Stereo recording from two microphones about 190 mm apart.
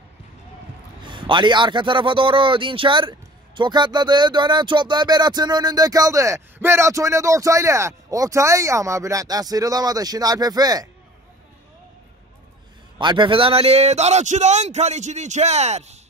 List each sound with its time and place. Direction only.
1.0 s speech: 25° right (ahead or behind)
13.0 s speech: 25° right (ahead or behind)